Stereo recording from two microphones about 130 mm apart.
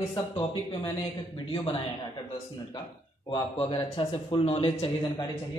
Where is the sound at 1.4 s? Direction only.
40° left (ahead or behind).